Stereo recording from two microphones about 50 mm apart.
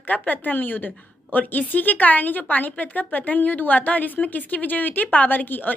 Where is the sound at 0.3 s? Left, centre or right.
Left.